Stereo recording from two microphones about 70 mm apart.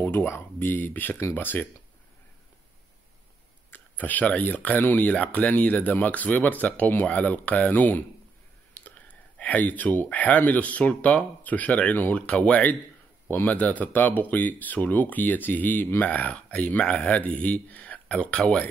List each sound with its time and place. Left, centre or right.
0.0 s speech: left
3.7 s speech: left